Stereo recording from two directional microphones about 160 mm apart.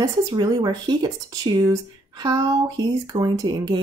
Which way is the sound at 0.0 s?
20° right (ahead or behind).